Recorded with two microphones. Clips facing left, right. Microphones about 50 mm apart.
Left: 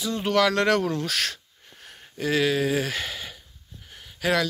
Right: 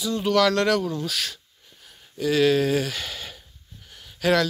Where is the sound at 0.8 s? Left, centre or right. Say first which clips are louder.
Left 2 dB; left.